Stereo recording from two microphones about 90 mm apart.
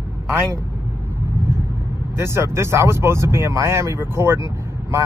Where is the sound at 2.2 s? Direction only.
30° right (ahead or behind).